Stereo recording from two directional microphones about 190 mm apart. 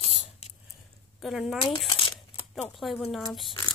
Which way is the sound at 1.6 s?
25° left (ahead or behind).